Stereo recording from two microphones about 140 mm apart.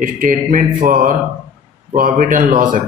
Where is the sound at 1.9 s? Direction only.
70° right (ahead or behind).